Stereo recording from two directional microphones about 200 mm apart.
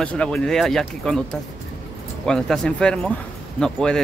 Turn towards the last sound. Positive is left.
turn(degrees=5)  # may be behind; listen again after turning